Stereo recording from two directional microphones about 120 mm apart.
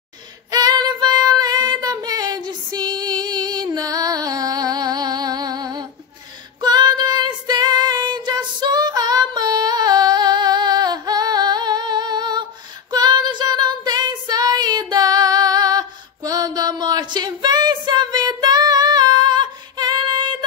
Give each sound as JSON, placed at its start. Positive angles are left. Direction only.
{"t": 0.5, "sound": "female singing", "side_deg": -35}
{"t": 12.9, "sound": "child singing", "side_deg": -35}